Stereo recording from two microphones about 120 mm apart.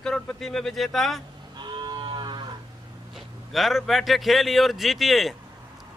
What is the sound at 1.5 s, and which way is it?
Moo, 40° right (ahead or behind).